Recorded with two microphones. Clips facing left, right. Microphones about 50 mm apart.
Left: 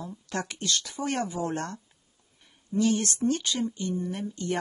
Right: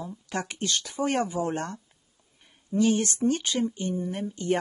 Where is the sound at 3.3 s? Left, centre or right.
Right.